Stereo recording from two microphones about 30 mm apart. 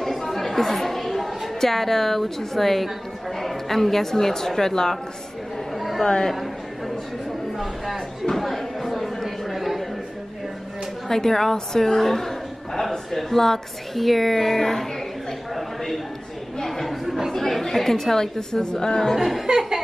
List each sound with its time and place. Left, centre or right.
0.0 s a woman's voice: centre
5.8 s chatter: centre
7.5 s speech: centre
8.4 s a sound: centre
11.1 s a woman's voice: centre
15.5 s a sound: centre
16.6 s chatter: centre
17.3 s a woman's voice: centre
19.1 s speech: centre
19.4 s a sound: centre